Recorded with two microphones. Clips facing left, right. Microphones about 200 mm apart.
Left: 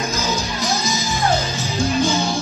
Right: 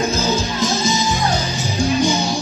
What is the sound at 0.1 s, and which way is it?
Music, 30° right (ahead or behind).